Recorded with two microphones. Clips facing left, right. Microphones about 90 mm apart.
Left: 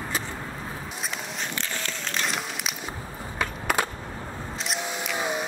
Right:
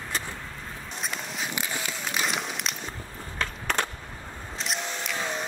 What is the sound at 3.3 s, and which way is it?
Skateboard, 10° left (ahead or behind).